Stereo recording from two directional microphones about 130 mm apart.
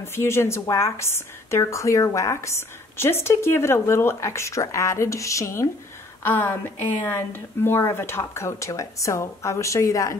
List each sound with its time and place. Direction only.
0.0 s a woman's voice: 20° left (ahead or behind)